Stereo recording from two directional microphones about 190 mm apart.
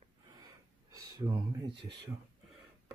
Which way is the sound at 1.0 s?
20° right (ahead or behind).